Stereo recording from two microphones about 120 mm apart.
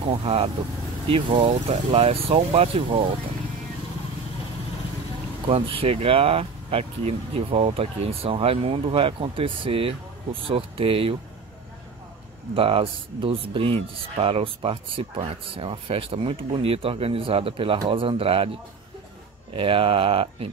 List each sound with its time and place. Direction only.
0.0 s speech: 50° right (ahead or behind)
5.5 s speech: 55° right (ahead or behind)
12.5 s speech: 50° right (ahead or behind)
19.5 s speech: 50° right (ahead or behind)